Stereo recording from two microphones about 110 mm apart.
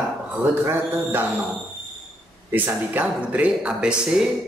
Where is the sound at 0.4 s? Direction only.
20° right (ahead or behind).